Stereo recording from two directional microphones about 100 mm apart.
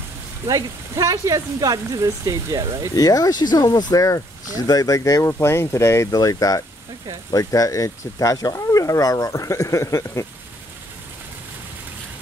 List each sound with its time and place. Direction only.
0.5 s speech: 30° right (ahead or behind)
3.0 s speech: 40° left (ahead or behind)